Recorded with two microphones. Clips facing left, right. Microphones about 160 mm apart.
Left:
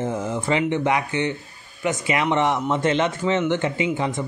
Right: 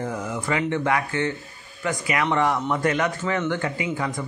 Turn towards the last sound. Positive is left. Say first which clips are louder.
# left 4 dB
turn(degrees=25)  # may be behind; listen again after turning